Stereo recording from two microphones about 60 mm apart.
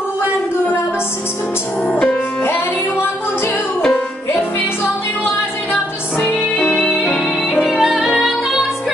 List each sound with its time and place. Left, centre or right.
1.9 s music: left
2.4 s music: left
3.9 s music: left
7.6 s music: centre